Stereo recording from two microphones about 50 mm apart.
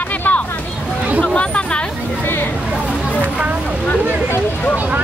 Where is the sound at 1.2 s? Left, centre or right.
Left.